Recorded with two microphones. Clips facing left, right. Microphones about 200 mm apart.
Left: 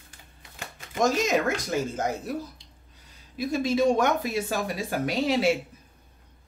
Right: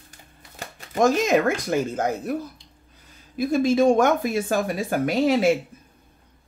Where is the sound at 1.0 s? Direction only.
55° right (ahead or behind).